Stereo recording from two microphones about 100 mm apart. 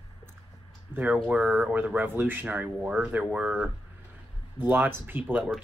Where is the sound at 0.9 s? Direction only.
20° right (ahead or behind).